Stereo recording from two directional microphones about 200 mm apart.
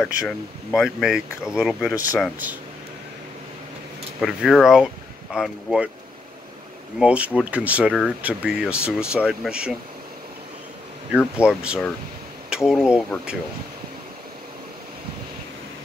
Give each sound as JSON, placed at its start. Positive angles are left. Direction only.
{"t": 0.0, "sound": "speech", "side_deg": 0}
{"t": 1.9, "sound": "speech", "side_deg": 15}
{"t": 4.2, "sound": "speech", "side_deg": 0}
{"t": 7.0, "sound": "speech", "side_deg": -5}
{"t": 11.4, "sound": "speech", "side_deg": -5}